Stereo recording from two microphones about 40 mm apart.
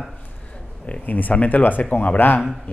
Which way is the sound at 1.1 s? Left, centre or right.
Left.